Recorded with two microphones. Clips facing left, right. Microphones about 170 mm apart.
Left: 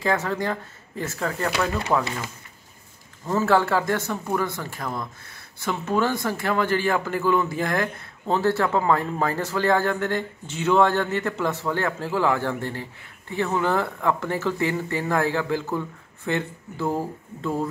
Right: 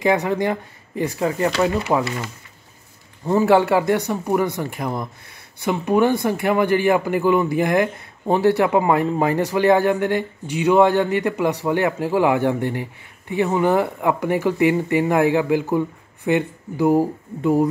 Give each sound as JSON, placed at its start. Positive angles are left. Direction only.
{"t": 0.0, "sound": "speech", "side_deg": -20}
{"t": 3.3, "sound": "speech", "side_deg": -20}